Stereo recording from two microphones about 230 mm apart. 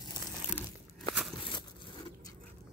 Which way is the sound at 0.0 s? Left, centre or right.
Centre.